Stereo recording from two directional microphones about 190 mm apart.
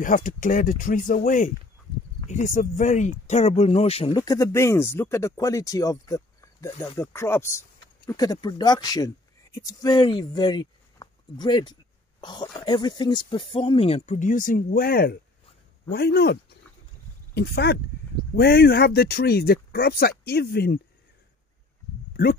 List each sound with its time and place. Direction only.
0.0 s speech: 45° left (ahead or behind)